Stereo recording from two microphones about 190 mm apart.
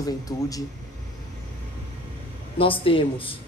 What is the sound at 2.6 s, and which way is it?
Speech, 30° left (ahead or behind).